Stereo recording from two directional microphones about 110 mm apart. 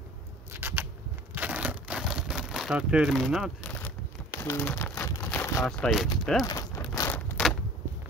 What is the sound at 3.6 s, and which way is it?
Crumpling, 20° left (ahead or behind).